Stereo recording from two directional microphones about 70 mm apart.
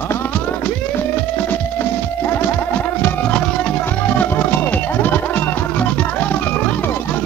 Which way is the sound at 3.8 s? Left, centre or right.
Left.